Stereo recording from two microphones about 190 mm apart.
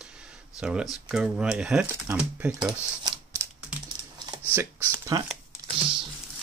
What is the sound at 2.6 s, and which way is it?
Speech, 20° right (ahead or behind).